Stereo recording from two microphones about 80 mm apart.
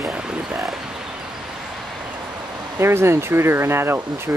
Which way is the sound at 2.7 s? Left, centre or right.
Right.